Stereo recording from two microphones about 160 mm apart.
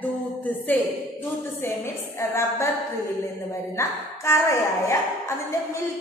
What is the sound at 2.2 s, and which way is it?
Speech, 15° left (ahead or behind).